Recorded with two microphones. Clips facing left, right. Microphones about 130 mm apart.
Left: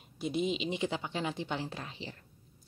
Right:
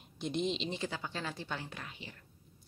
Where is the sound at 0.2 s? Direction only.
5° left (ahead or behind).